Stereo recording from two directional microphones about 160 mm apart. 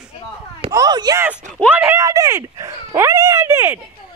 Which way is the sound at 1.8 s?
20° right (ahead or behind).